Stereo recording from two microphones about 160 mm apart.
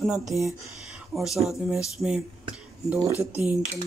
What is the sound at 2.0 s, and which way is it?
Speech, 20° right (ahead or behind).